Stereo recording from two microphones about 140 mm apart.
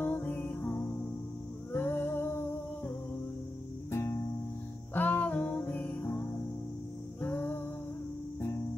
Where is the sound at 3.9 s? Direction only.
20° left (ahead or behind).